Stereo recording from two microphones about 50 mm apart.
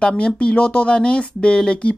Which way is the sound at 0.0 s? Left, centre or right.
Left.